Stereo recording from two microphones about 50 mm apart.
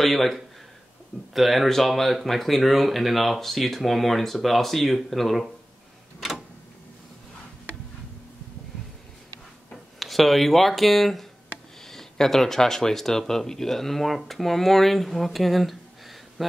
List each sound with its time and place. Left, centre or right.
0.0 s speech: centre
9.9 s speech: centre